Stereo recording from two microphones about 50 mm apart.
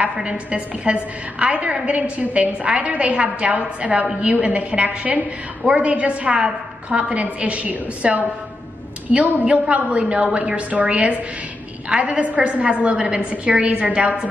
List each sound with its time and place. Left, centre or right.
0.0 s a woman's voice: right